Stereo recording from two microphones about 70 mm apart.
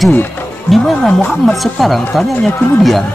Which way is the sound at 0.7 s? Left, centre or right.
Centre.